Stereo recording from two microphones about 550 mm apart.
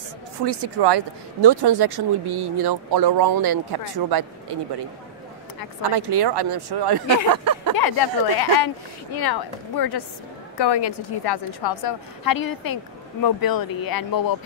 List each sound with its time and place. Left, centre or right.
0.5 s speech: right
5.9 s speech: right
7.2 s a sound: right
7.7 s a woman's voice: left